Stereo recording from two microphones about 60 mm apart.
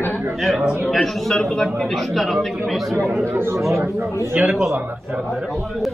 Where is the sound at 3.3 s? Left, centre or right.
Right.